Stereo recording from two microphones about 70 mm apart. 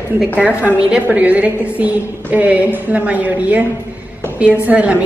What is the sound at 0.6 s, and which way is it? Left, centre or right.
A woman's voice, centre.